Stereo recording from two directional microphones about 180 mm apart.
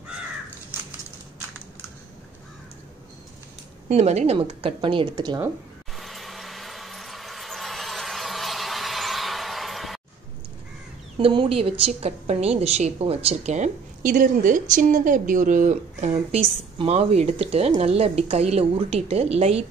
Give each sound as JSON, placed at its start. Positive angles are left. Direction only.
{"t": 3.9, "sound": "speech", "side_deg": -40}
{"t": 5.9, "sound": "vehicle", "side_deg": 0}
{"t": 11.1, "sound": "a woman's voice", "side_deg": -30}